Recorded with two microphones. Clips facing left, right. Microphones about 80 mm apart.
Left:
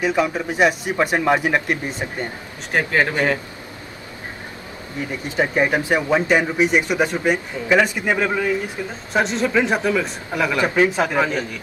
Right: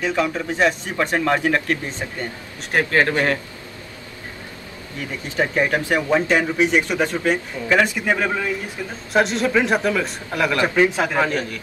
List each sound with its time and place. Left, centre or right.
0.0 s speech: centre
5.4 s speech: centre
9.1 s speech: centre